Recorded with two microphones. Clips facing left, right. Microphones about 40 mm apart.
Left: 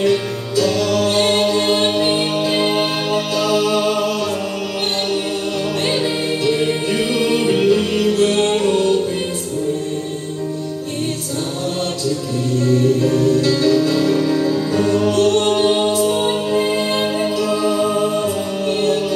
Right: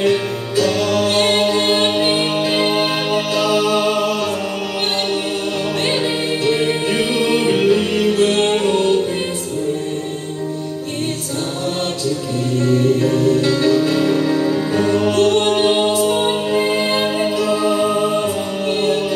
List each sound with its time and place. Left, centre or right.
0.0 s music: centre
5.9 s music: centre
12.5 s music: right